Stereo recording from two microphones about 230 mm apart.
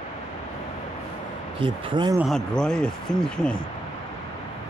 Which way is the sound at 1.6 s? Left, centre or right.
Centre.